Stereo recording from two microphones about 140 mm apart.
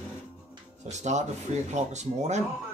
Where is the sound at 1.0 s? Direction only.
55° right (ahead or behind).